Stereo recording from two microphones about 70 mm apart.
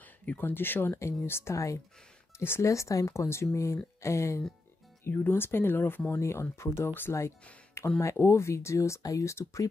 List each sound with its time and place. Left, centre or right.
0.2 s speech: left
2.3 s speech: left
2.6 s speech: left
5.0 s speech: left